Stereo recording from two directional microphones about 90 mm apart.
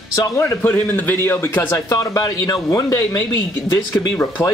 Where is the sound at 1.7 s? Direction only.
40° left (ahead or behind).